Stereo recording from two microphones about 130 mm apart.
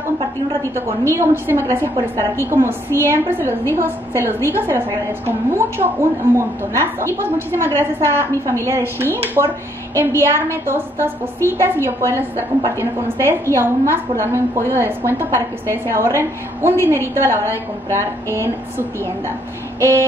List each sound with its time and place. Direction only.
1.1 s a woman's voice: 20° right (ahead or behind)
4.6 s a woman's voice: 20° right (ahead or behind)